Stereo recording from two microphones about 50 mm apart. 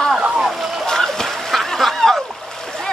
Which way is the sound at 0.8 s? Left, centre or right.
Centre.